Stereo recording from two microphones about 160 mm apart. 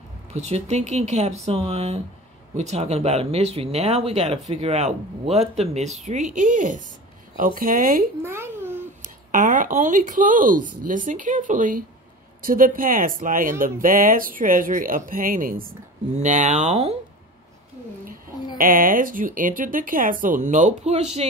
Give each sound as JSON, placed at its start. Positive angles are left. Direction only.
{"t": 0.3, "sound": "speech", "side_deg": -45}
{"t": 8.2, "sound": "babbling", "side_deg": -15}
{"t": 9.0, "sound": "speech", "side_deg": -55}
{"t": 16.1, "sound": "speech", "side_deg": -50}
{"t": 18.6, "sound": "speech", "side_deg": -60}